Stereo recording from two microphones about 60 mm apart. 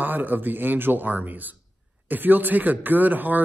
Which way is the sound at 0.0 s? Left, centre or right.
Right.